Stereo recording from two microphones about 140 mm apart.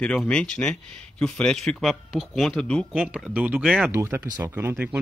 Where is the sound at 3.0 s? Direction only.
10° right (ahead or behind).